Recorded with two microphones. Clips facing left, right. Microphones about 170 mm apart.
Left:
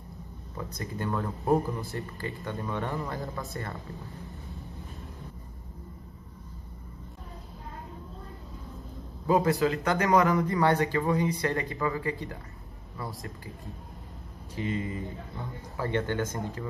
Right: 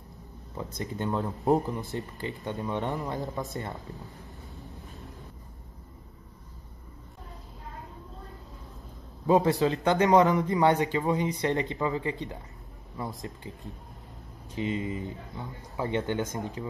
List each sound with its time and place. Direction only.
0.6 s speech: 20° right (ahead or behind)
4.0 s vehicle: centre (ahead or behind)
9.3 s speech: 25° right (ahead or behind)
14.5 s speech: 20° right (ahead or behind)